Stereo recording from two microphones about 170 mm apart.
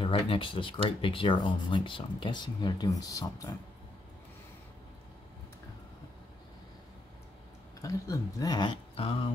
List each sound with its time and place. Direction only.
0.0 s speech: 30° left (ahead or behind)
7.8 s speech: 20° left (ahead or behind)